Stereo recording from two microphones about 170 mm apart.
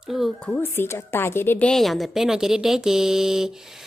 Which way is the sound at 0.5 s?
15° left (ahead or behind).